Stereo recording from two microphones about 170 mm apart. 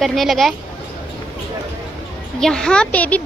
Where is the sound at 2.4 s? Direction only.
5° left (ahead or behind).